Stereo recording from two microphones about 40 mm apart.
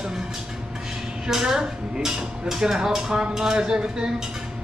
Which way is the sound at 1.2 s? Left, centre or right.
Centre.